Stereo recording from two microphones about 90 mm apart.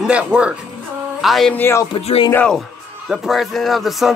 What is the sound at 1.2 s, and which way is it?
Speech, centre (ahead or behind).